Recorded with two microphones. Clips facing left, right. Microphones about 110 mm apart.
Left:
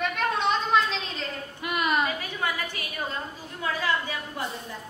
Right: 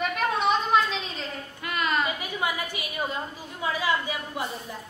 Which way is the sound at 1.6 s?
15° left (ahead or behind).